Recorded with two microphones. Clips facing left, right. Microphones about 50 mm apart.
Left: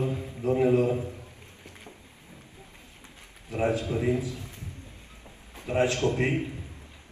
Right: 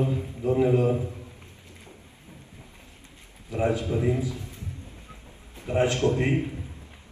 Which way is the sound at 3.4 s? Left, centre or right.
Left.